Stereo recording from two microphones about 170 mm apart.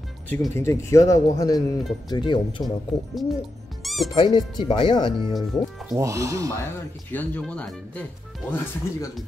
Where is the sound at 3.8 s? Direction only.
Centre (ahead or behind).